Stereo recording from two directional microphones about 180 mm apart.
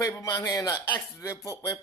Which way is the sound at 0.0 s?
20° left (ahead or behind).